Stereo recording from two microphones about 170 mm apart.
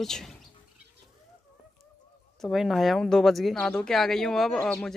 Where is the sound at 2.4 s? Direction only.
Centre (ahead or behind).